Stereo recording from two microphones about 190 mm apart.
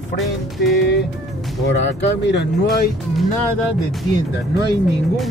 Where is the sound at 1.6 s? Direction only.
70° left (ahead or behind).